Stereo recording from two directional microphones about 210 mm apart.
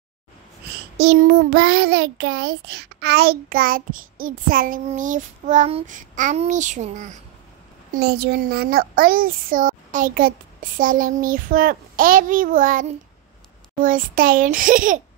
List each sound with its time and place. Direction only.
0.9 s a child's voice: 50° right (ahead or behind)
7.9 s a child's voice: 45° right (ahead or behind)